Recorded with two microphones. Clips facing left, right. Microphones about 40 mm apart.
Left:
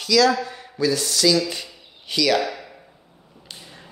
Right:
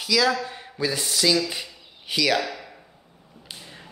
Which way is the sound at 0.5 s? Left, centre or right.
Right.